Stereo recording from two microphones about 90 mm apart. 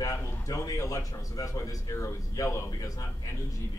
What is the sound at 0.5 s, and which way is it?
A man's voice, 35° left (ahead or behind).